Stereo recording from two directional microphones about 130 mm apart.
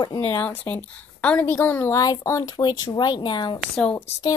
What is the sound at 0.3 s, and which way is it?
A woman's voice, 20° left (ahead or behind).